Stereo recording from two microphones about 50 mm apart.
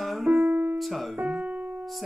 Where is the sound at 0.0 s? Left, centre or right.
Centre.